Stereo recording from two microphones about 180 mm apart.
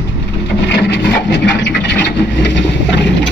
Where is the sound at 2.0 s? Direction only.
75° left (ahead or behind).